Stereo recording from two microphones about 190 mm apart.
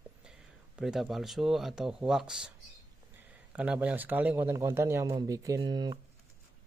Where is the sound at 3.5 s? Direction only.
5° right (ahead or behind).